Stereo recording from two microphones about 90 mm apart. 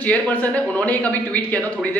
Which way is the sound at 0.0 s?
15° left (ahead or behind).